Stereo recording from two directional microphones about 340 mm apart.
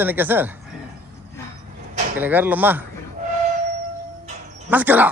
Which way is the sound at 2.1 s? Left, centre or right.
Centre.